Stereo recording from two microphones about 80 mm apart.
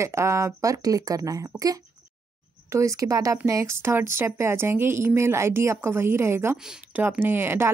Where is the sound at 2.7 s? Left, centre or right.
Right.